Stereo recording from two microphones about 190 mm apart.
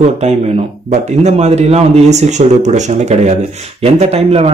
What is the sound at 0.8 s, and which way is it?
Speech, 35° right (ahead or behind).